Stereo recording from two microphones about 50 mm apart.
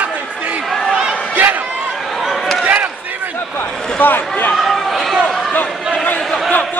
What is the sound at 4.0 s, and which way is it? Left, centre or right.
Speech, left.